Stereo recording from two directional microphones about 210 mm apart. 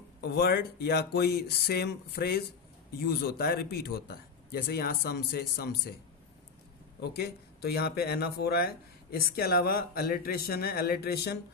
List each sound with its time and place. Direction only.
0.2 s speech: 50° left (ahead or behind)
7.0 s speech: 50° left (ahead or behind)